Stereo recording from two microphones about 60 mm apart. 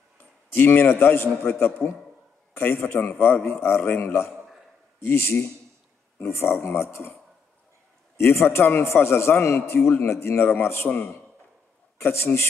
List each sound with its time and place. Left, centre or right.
0.2 s a man's voice: left
8.2 s a man's voice: left
12.0 s a man's voice: left